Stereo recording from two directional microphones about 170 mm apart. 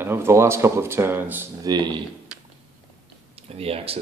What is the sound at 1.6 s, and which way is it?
Speech, 25° right (ahead or behind).